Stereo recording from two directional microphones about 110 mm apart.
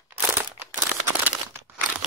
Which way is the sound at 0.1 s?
20° right (ahead or behind).